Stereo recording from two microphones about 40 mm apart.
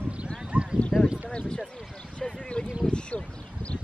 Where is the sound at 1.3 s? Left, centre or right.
Left.